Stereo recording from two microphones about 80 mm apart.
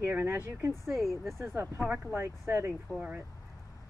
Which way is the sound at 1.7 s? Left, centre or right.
Right.